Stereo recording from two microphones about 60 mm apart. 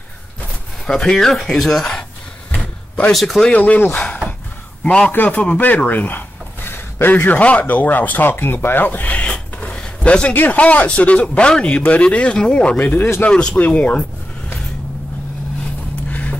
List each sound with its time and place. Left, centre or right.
0.8 s speech: centre
3.1 s speech: centre
3.4 s speech: left
5.1 s a man's voice: left
12.8 s a man's voice: left
13.2 s speech: centre
15.6 s vehicle: left